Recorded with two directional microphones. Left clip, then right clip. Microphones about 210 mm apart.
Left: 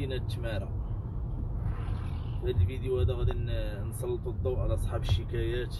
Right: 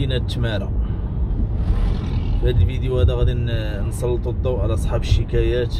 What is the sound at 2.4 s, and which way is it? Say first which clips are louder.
Speech: right 8 dB; 10° right (ahead or behind).